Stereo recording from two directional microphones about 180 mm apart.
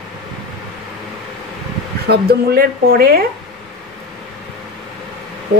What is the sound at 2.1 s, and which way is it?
Speech, 60° right (ahead or behind).